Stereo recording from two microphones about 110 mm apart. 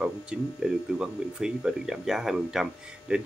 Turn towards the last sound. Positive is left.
turn(degrees=-5)  # may be behind; listen again after turning